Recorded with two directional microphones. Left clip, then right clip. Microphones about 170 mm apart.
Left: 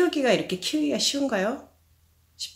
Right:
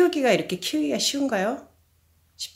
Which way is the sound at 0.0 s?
30° right (ahead or behind).